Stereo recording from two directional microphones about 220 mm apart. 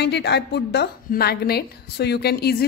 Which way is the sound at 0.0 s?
50° left (ahead or behind).